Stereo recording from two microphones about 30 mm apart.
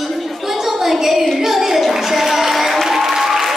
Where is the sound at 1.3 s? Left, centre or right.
Centre.